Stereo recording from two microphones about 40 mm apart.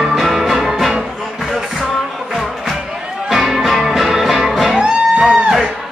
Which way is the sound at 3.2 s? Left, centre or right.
Centre.